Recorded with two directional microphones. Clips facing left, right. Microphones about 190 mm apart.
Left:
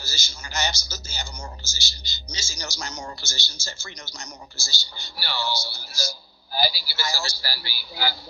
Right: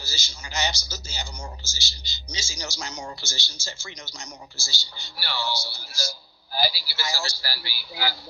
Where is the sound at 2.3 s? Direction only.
40° left (ahead or behind).